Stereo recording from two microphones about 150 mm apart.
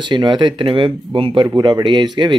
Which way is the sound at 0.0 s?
30° right (ahead or behind).